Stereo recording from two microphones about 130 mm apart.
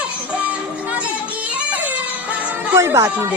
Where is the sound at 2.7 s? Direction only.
20° right (ahead or behind).